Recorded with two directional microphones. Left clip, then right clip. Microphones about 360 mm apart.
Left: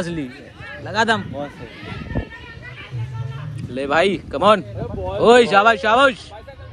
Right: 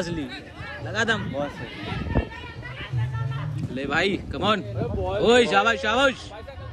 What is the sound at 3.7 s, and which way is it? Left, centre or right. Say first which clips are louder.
A man's voice: left 7 dB; centre.